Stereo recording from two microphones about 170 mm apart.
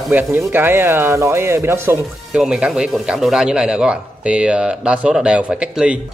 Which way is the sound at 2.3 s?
5° right (ahead or behind).